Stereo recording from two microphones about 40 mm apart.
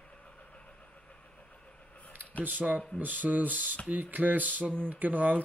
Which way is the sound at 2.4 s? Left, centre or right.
Right.